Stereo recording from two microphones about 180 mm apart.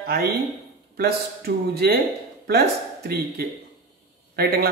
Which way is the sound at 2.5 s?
60° right (ahead or behind).